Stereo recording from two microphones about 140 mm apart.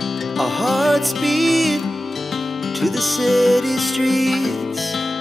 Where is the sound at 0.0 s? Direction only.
Centre (ahead or behind).